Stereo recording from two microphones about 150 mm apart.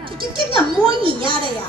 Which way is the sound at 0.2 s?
35° right (ahead or behind).